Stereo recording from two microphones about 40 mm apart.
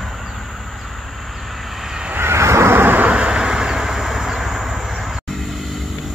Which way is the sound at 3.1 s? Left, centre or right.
Right.